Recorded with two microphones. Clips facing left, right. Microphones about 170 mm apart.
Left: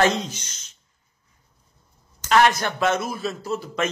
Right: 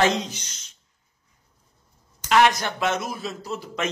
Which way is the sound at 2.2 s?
15° right (ahead or behind).